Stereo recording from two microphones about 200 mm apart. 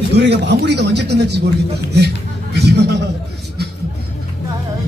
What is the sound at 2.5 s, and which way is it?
Speech, 55° right (ahead or behind).